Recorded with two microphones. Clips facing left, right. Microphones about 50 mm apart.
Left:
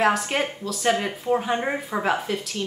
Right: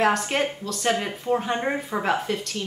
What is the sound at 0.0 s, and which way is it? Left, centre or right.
Speech, centre.